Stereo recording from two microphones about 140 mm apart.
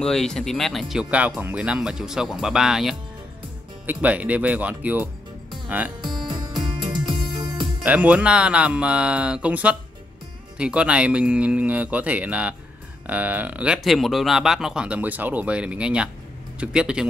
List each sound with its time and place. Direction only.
0.0 s speech: 5° left (ahead or behind); by 5.1 s 10° right (ahead or behind)
5.9 s music: 30° right (ahead or behind)
7.8 s speech: 10° right (ahead or behind)